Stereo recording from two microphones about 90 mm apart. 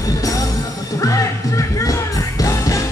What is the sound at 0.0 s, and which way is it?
Music, 40° left (ahead or behind).